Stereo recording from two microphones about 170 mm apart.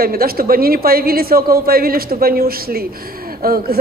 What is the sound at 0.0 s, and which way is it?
A man's voice, 60° right (ahead or behind).